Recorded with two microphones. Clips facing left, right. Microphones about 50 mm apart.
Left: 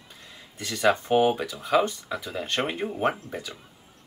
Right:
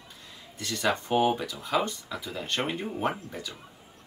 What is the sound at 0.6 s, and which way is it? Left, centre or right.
Speech, centre.